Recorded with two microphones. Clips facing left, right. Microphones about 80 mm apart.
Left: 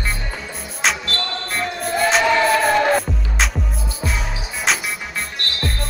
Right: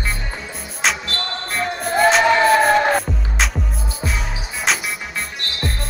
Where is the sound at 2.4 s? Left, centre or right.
Right.